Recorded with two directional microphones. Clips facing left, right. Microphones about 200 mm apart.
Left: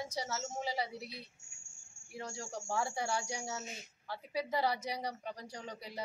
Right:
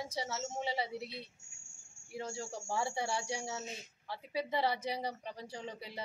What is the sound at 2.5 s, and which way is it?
Speech, 5° right (ahead or behind).